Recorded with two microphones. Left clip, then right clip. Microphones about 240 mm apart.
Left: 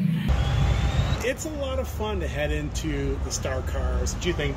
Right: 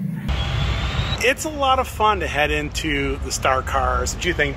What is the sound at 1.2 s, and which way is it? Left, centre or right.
Speech, centre.